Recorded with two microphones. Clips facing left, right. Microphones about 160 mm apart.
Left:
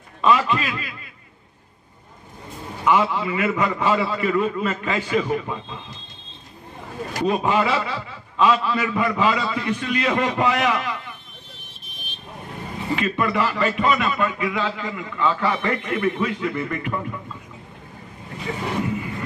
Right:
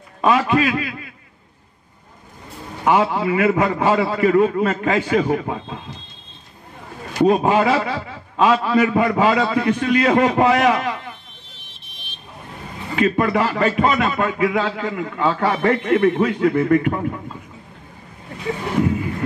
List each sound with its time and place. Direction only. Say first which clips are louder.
0.2 s a man's voice: right 3 dB; 55° right (ahead or behind)
2.8 s a man's voice: right 3 dB; 50° right (ahead or behind)
7.2 s a man's voice: right 5 dB; 50° right (ahead or behind)
12.9 s a man's voice: right 5 dB; 50° right (ahead or behind)